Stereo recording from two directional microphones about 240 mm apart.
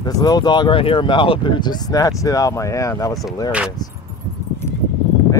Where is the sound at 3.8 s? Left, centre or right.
Centre.